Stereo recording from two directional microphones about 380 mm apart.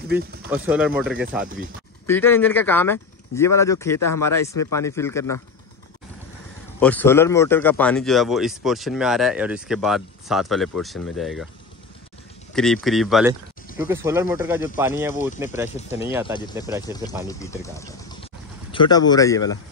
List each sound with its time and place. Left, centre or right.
0.1 s speech: right
0.5 s speech: centre
6.8 s speech: centre
12.8 s speech: centre
16.8 s speech: centre